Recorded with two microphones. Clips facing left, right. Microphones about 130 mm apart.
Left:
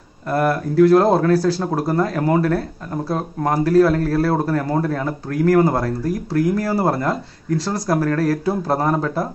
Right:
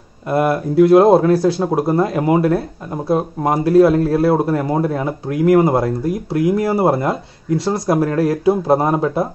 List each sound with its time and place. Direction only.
0.3 s speech: 20° right (ahead or behind)